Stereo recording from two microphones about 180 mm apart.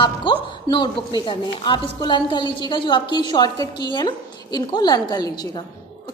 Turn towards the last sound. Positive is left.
turn(degrees=25)  # may be behind; listen again after turning